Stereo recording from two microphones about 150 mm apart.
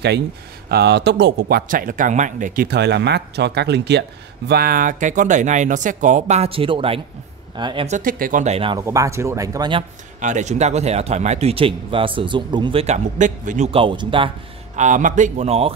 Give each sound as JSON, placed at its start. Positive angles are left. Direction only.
{"t": 0.7, "sound": "speech", "side_deg": -90}
{"t": 1.5, "sound": "speech", "side_deg": -70}
{"t": 8.0, "sound": "speech", "side_deg": -70}
{"t": 8.7, "sound": "speech", "side_deg": -20}
{"t": 10.2, "sound": "speech", "side_deg": -50}
{"t": 12.8, "sound": "speech", "side_deg": -55}
{"t": 13.7, "sound": "speech", "side_deg": -35}
{"t": 14.8, "sound": "speech", "side_deg": -55}